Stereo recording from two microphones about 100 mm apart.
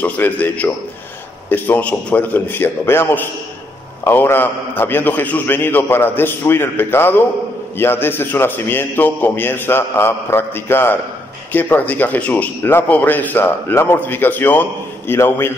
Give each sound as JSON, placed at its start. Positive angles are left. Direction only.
{"t": 0.0, "sound": "a man's voice", "side_deg": 15}